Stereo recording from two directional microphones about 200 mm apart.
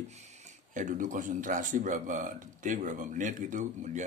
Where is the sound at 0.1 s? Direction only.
35° right (ahead or behind).